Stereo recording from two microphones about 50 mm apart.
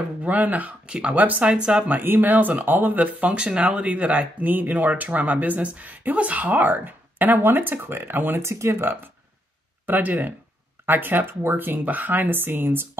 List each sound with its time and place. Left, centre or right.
0.2 s speech: right
0.8 s speech: right
1.9 s speech: right
3.3 s speech: centre; by 8.5 s right
8.5 s speech: right
9.8 s speech: right